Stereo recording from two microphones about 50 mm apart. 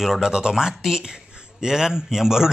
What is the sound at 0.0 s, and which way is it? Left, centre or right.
A man's voice, centre.